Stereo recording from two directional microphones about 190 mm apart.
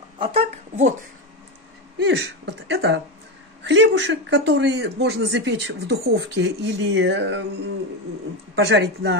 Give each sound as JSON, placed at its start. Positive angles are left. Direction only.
{"t": 0.2, "sound": "a child's voice", "side_deg": -30}
{"t": 2.0, "sound": "speech", "side_deg": -65}
{"t": 8.5, "sound": "speech", "side_deg": -65}